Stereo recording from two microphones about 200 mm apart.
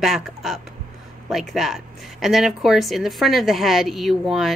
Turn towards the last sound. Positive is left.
turn(degrees=0)  # may be behind; listen again after turning